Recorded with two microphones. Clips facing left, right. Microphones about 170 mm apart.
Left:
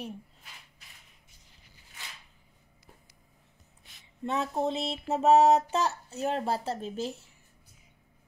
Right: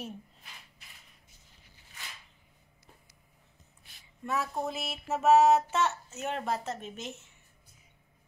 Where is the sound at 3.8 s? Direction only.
25° left (ahead or behind).